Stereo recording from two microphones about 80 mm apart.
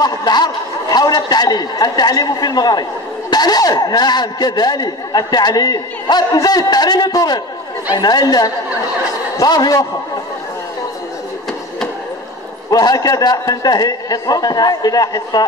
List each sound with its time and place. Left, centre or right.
0.0 s a man's voice: left
12.7 s speech: left